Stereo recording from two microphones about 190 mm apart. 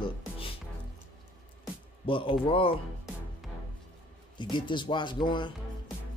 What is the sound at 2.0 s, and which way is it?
Speech, 25° left (ahead or behind).